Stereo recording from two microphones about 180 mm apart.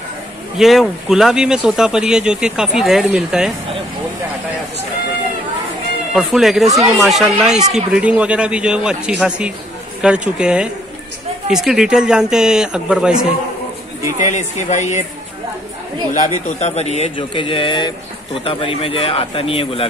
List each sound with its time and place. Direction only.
0.6 s speech: centre (ahead or behind)
6.1 s speech: centre (ahead or behind)
14.1 s speech: 45° left (ahead or behind)
16.1 s a man's voice: 45° left (ahead or behind)